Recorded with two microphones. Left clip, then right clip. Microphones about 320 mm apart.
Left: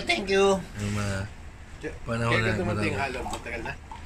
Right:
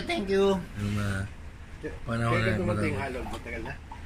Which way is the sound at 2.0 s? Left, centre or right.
Centre.